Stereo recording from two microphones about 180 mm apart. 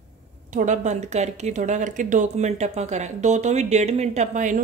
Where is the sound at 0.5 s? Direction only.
45° right (ahead or behind).